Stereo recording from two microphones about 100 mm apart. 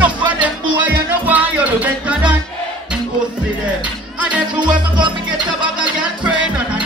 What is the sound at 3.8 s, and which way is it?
Music, 15° right (ahead or behind).